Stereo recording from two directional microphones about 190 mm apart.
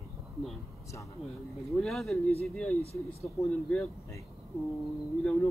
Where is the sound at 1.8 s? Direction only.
Centre (ahead or behind).